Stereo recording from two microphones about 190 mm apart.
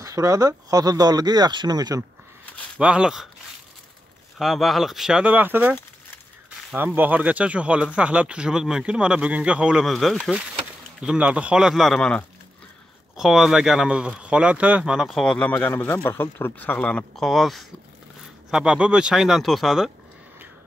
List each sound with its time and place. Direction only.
0.0 s speech: 15° right (ahead or behind)
2.8 s speech: 5° right (ahead or behind)
4.4 s speech: centre (ahead or behind)
7.0 s speech: 10° right (ahead or behind)